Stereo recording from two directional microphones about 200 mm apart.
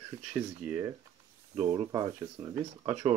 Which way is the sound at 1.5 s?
20° right (ahead or behind).